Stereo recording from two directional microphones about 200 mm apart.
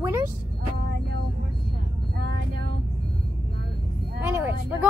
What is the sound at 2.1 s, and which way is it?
Music, 55° right (ahead or behind).